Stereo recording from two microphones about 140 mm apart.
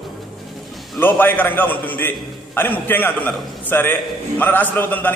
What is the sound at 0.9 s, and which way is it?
A man's voice, 15° left (ahead or behind).